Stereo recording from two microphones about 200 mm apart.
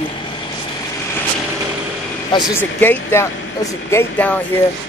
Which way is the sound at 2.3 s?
20° left (ahead or behind).